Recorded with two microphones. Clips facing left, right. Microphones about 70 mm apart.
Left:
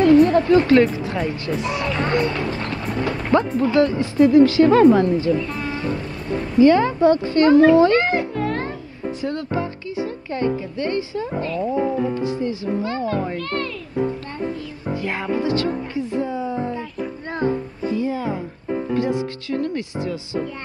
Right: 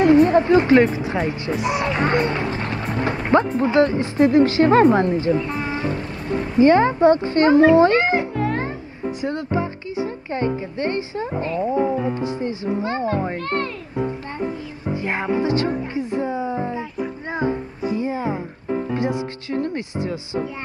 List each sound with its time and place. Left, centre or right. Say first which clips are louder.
0.0 s a sound: even; right
1.0 s speech: right 1 dB; right
3.2 s music: right 1 dB; right
3.6 s a woman's voice: even; right
15.0 s a woman's voice: right 2 dB; right